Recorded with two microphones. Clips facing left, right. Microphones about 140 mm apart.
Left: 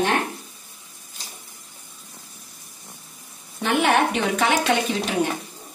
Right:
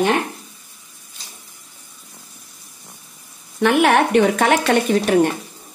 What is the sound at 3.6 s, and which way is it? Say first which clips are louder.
A woman's voice: right 5 dB; 70° right (ahead or behind).